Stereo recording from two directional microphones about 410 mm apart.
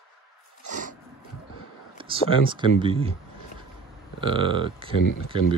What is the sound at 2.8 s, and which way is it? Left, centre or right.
Speech, centre.